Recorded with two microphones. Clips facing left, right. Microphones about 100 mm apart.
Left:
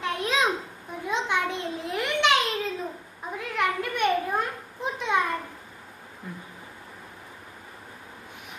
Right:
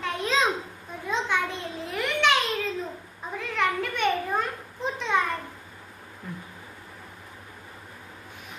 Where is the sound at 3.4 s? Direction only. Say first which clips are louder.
Right 1 dB; 10° left (ahead or behind).